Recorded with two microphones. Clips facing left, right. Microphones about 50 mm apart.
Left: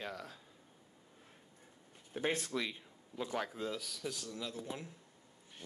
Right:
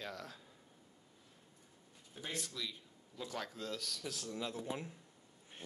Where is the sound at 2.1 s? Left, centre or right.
Left.